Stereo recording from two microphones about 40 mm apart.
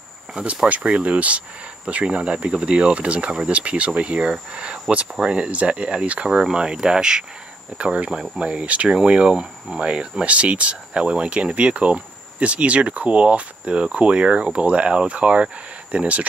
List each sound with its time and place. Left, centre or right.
0.4 s speech: right
2.0 s speech: right
7.7 s speech: right